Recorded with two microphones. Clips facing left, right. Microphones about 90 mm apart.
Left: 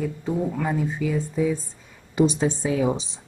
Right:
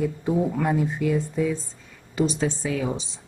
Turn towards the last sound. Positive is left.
turn(degrees=20)  # may be behind; listen again after turning